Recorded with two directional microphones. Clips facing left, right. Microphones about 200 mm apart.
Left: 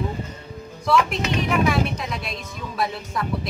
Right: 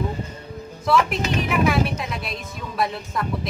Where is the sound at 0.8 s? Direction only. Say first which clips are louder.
Even; centre (ahead or behind).